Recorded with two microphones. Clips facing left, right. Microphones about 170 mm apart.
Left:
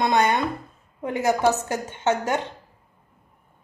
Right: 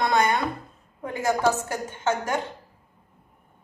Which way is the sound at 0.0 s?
20° left (ahead or behind).